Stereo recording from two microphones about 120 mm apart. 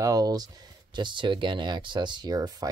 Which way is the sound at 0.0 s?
30° right (ahead or behind).